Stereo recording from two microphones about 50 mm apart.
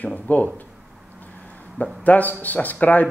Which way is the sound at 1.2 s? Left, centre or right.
Left.